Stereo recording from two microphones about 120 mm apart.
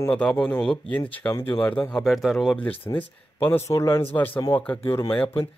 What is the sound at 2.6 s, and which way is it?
Speech, 15° left (ahead or behind).